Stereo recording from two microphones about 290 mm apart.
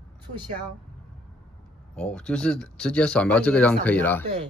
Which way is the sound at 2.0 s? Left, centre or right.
Centre.